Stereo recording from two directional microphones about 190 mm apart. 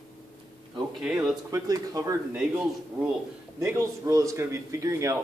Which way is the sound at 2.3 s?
5° right (ahead or behind).